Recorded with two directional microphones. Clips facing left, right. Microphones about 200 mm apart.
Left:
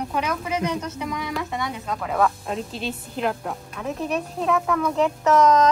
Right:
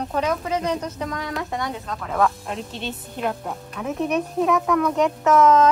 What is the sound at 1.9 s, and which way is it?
Speech, 5° left (ahead or behind).